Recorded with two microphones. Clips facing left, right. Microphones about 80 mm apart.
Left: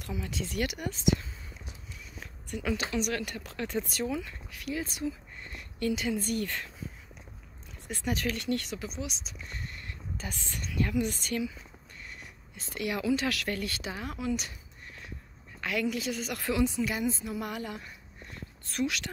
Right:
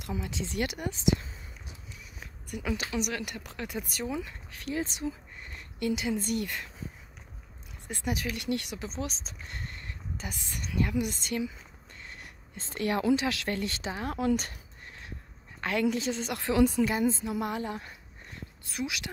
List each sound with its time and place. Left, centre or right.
0.0 s speech: right
2.1 s a sound: centre
2.9 s speech: centre
4.1 s speech: right
7.9 s speech: centre; by 9.8 s right
9.8 s speech: centre
12.5 s speech: right
13.1 s speech: right
15.6 s speech: right
16.5 s speech: right
16.8 s speech: right
18.7 s speech: centre